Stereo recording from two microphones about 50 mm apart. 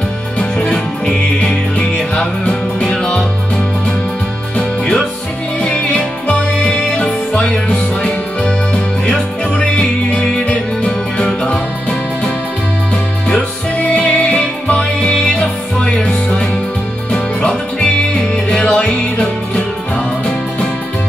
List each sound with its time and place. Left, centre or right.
0.4 s music: left
1.0 s music: centre
4.6 s music: left
7.0 s music: left
13.3 s music: left
17.5 s music: centre